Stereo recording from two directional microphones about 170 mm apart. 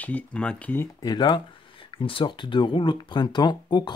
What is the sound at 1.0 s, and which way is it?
Speech, 25° left (ahead or behind).